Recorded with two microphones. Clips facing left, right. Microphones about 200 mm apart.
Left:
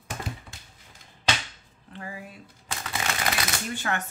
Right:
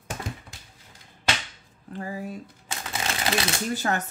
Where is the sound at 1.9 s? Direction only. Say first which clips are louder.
Right 6 dB; 40° right (ahead or behind).